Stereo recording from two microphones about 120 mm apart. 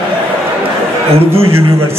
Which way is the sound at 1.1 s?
55° right (ahead or behind).